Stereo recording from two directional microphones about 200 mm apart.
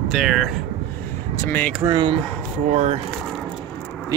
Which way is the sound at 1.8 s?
20° right (ahead or behind).